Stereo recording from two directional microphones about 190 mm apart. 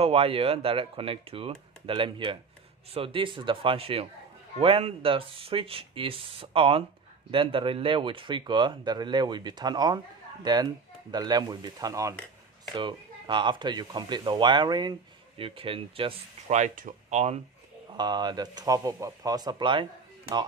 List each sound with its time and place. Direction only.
0.0 s speech: 30° right (ahead or behind)
17.9 s speech: 20° right (ahead or behind)